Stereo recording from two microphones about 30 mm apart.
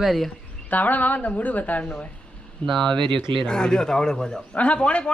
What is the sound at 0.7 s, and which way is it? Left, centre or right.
A woman's voice, left.